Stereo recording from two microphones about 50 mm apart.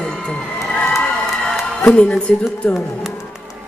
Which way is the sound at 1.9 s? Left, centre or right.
Centre.